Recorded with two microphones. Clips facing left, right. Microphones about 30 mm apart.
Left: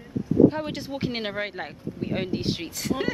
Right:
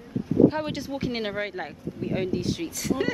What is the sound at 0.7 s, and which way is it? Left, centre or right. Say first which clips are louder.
Speech: even; centre.